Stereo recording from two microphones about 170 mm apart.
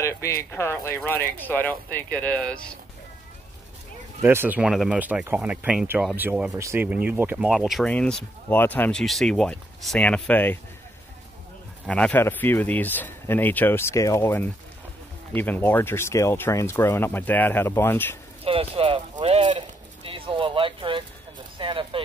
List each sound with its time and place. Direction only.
0.0 s speech: 15° left (ahead or behind)
4.2 s speech: 15° right (ahead or behind); by 10.6 s 10° left (ahead or behind)
11.8 s speech: 5° left (ahead or behind)
18.4 s a sound: 35° right (ahead or behind)